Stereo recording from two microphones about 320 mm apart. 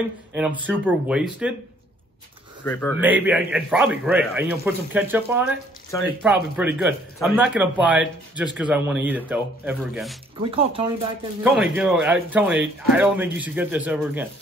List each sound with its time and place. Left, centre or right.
0.3 s speech: centre
2.6 s speech: centre
3.0 s speech: centre
10.5 s speech: centre
11.4 s speech: centre